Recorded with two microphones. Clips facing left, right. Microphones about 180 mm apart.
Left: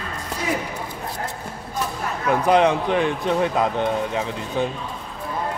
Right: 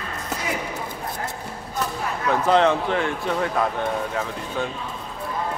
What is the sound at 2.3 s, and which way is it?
Speech, 15° left (ahead or behind).